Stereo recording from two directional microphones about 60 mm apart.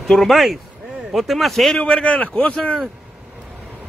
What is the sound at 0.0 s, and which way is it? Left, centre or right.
Speech, centre.